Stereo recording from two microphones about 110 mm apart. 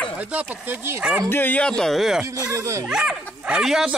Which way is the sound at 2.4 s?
25° right (ahead or behind).